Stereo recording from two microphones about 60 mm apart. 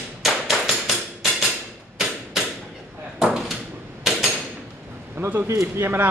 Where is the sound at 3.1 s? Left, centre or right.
Centre.